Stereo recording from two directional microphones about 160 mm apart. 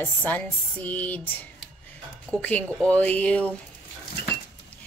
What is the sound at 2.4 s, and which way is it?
Speech, 10° left (ahead or behind).